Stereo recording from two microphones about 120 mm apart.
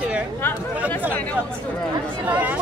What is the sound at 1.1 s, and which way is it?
Speech, 10° left (ahead or behind).